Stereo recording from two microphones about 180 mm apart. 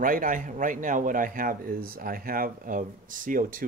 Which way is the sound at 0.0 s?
50° right (ahead or behind).